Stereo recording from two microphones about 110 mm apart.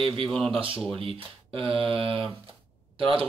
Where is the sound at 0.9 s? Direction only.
55° right (ahead or behind).